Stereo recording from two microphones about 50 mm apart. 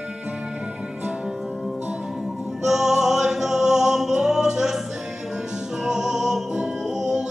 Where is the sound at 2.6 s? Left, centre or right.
Centre.